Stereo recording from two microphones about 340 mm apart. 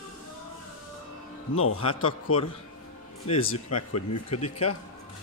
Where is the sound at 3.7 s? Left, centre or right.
Left.